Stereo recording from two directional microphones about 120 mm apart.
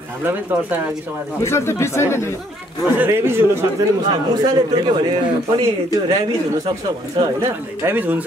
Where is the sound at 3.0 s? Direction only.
20° right (ahead or behind).